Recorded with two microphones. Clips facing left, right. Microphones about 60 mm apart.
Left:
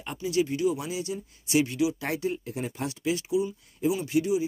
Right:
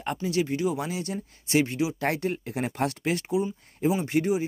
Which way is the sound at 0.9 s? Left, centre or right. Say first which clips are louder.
Even; right.